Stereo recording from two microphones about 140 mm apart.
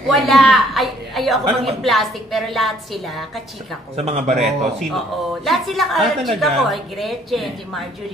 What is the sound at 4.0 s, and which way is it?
Speech, 55° right (ahead or behind).